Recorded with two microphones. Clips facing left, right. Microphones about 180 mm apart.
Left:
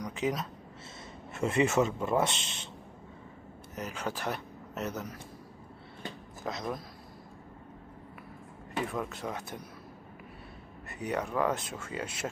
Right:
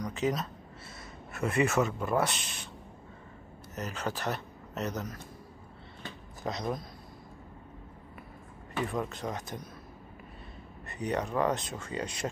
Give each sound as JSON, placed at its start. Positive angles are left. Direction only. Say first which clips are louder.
{"t": 0.0, "sound": "speech", "louder": "right 1 dB", "side_deg": 10}
{"t": 1.3, "sound": "speech", "louder": "left 1 dB", "side_deg": 25}
{"t": 3.7, "sound": "speech", "louder": "right 1 dB", "side_deg": 10}
{"t": 6.4, "sound": "speech", "louder": "right 2 dB", "side_deg": 0}
{"t": 9.1, "sound": "speech", "louder": "right 1 dB", "side_deg": 5}
{"t": 10.9, "sound": "speech", "louder": "right 1 dB", "side_deg": 5}